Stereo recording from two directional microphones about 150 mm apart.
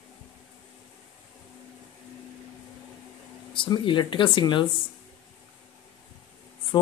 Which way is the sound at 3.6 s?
30° left (ahead or behind).